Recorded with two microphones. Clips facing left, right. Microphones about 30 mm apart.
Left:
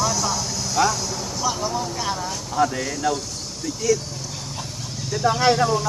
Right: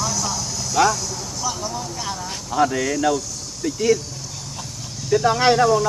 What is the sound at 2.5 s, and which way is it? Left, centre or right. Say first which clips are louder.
Speech: right 3 dB; right.